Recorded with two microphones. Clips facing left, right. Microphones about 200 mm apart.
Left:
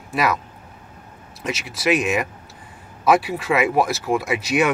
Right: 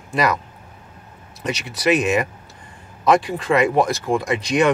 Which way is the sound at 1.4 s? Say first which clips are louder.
Right 2 dB; centre (ahead or behind).